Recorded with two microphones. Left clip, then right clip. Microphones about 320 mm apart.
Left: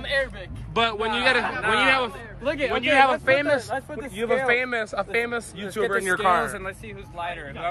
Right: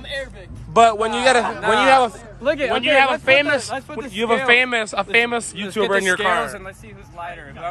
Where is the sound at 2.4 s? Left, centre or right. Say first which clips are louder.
Right 5 dB; right.